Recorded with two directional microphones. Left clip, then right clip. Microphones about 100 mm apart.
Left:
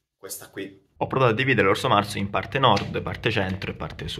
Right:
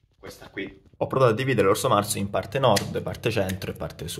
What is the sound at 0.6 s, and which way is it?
Speech, 5° left (ahead or behind).